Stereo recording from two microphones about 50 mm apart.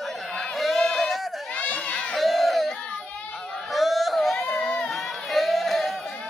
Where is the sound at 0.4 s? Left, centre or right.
Centre.